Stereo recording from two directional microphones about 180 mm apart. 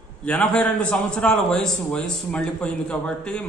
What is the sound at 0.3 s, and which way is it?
A man's voice, 5° left (ahead or behind).